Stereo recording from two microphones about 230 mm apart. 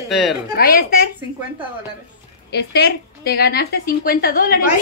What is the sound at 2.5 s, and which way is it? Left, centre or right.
A woman's voice, left.